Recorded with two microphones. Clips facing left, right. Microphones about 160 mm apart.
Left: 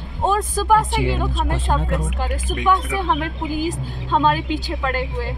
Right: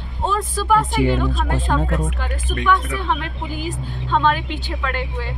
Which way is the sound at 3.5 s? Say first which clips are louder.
Left 4 dB; 40° left (ahead or behind).